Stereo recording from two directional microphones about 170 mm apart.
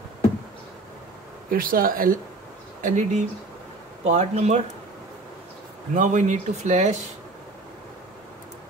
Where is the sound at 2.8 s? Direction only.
45° right (ahead or behind).